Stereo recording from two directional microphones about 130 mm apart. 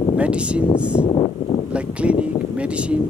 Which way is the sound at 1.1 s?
40° left (ahead or behind).